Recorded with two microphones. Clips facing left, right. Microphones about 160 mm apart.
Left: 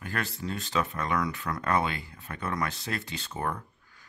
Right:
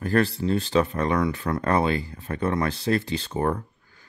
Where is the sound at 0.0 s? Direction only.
35° right (ahead or behind).